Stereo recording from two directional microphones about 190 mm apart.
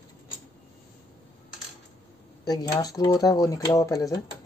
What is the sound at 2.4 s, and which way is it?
Speech, 20° left (ahead or behind).